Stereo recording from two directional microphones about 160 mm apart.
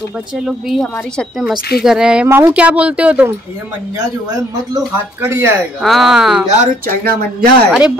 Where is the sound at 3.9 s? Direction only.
25° right (ahead or behind).